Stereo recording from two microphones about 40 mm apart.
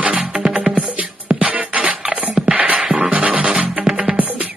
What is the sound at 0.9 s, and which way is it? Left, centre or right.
Music, right.